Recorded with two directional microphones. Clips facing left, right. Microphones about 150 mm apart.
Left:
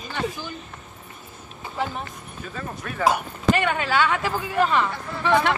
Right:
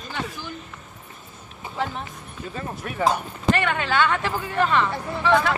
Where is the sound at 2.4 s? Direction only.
20° right (ahead or behind).